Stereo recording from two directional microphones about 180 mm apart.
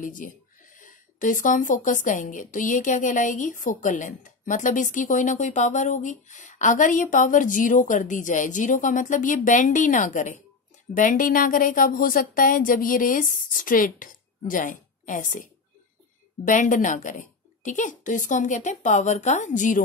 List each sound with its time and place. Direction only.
0.0 s speech: 50° left (ahead or behind)
16.4 s speech: 45° left (ahead or behind)